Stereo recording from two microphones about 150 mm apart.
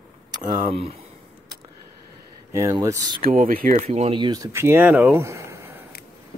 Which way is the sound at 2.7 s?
20° right (ahead or behind).